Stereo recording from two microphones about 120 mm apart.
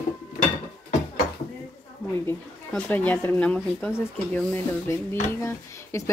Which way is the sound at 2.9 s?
15° left (ahead or behind).